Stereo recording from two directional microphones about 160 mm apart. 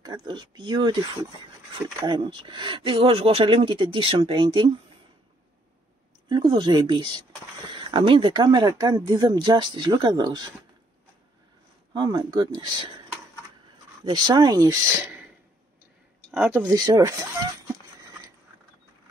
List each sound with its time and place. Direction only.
0.0 s speech: 25° right (ahead or behind)
2.0 s speech: 30° right (ahead or behind)
6.2 s speech: 30° right (ahead or behind)
11.9 s speech: 25° right (ahead or behind)
14.0 s speech: 25° right (ahead or behind)
16.3 s speech: 10° right (ahead or behind)
16.7 s speech: 20° right (ahead or behind)